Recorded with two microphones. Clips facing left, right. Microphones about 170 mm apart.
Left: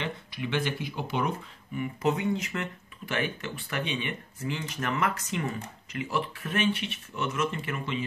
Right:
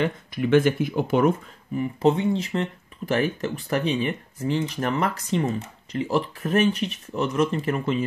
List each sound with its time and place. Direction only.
0.0 s speech: 45° right (ahead or behind)
1.8 s speech: 30° right (ahead or behind)